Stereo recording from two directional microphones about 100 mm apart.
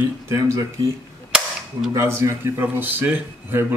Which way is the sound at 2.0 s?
25° right (ahead or behind).